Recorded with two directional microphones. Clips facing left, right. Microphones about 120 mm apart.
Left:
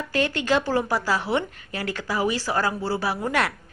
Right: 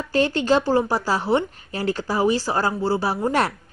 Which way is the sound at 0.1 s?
30° right (ahead or behind).